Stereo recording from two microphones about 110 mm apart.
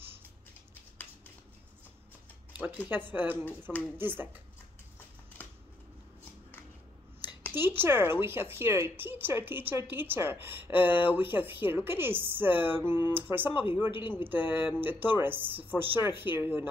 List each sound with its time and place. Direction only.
2.9 s speech: 20° right (ahead or behind)
7.5 s speech: 20° right (ahead or behind)